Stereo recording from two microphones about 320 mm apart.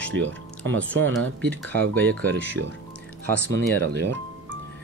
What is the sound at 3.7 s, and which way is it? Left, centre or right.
Speech, right.